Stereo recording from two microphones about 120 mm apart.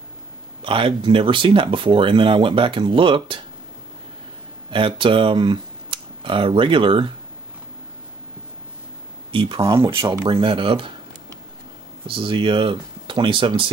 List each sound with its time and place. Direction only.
0.6 s speech: 45° right (ahead or behind)
4.6 s speech: 45° right (ahead or behind)
9.3 s speech: 45° right (ahead or behind)
9.6 s speech: 25° right (ahead or behind)
9.8 s speech: 45° right (ahead or behind)
12.1 s speech: 45° right (ahead or behind)